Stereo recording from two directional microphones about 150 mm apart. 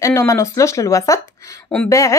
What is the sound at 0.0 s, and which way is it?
Speech, 20° left (ahead or behind).